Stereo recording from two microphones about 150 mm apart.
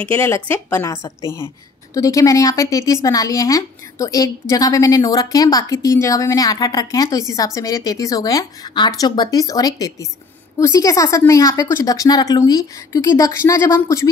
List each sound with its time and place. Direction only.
0.0 s speech: 15° left (ahead or behind)
2.0 s a woman's voice: 20° left (ahead or behind)